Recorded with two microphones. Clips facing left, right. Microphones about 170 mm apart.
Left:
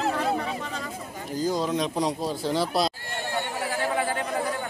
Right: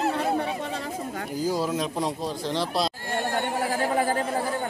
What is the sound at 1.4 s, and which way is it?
A man's voice, 5° right (ahead or behind).